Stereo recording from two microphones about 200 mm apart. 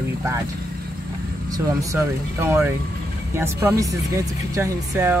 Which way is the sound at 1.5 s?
15° right (ahead or behind).